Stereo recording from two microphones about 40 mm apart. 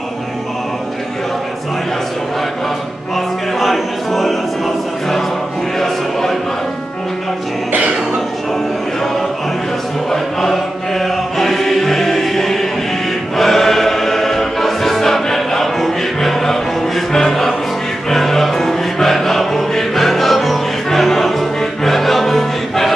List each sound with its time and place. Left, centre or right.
3.5 s music: centre
10.1 s choir: centre
18.1 s music: centre